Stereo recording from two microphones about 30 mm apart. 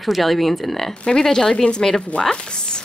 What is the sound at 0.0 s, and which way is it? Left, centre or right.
Speech, centre.